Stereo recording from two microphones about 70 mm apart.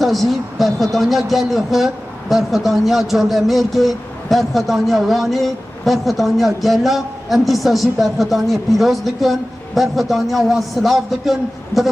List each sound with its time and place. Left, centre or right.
0.0 s speech: centre